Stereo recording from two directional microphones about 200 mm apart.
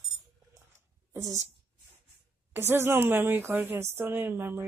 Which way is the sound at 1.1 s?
15° right (ahead or behind).